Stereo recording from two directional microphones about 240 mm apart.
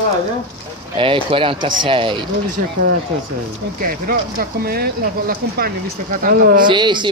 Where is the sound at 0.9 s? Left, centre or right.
Right.